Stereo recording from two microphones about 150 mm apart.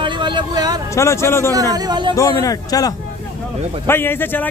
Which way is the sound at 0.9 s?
20° left (ahead or behind).